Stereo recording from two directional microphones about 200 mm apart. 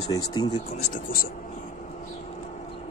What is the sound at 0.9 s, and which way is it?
Speech, 45° left (ahead or behind).